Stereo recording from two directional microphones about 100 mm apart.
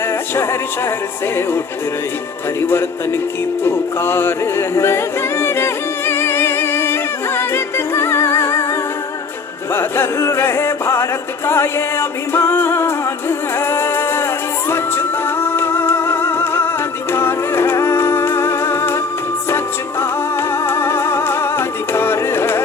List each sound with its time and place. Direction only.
0.4 s music: 25° left (ahead or behind)
2.6 s music: 25° left (ahead or behind)
9.8 s music: 25° left (ahead or behind)